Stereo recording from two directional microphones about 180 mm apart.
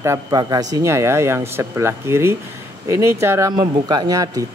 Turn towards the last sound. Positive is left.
turn(degrees=-20)  # may be behind; listen again after turning